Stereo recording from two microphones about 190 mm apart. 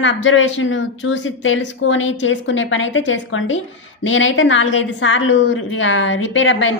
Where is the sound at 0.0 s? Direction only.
85° left.